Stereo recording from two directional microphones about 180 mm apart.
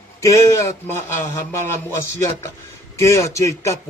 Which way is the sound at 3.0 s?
15° left (ahead or behind).